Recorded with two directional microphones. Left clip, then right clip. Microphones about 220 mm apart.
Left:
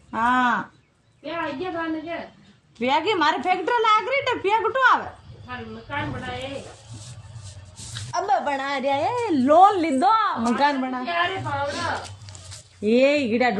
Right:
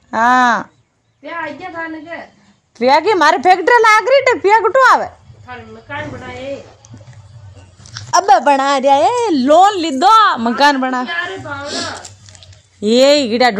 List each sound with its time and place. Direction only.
0.1 s a woman's voice: 20° right (ahead or behind)
2.9 s a woman's voice: 20° right (ahead or behind)
8.1 s a woman's voice: 20° right (ahead or behind)